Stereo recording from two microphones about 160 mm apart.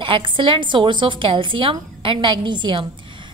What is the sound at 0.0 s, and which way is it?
A woman's voice, 30° right (ahead or behind).